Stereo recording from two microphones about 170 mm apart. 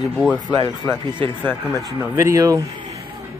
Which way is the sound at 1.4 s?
15° left (ahead or behind).